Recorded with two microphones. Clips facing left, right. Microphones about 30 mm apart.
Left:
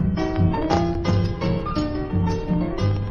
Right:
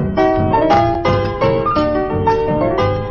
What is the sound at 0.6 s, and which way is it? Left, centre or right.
Music, right.